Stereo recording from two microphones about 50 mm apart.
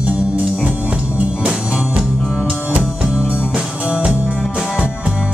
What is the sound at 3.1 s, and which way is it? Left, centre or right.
Music, centre.